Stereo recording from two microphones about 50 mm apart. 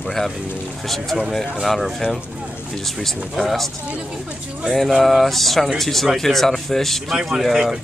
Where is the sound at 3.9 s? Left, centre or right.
Right.